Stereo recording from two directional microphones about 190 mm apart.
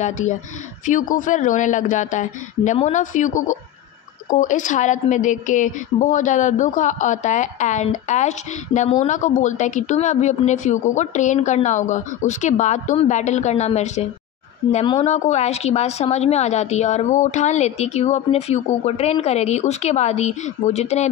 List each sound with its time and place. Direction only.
0.8 s a woman's voice: 40° left (ahead or behind)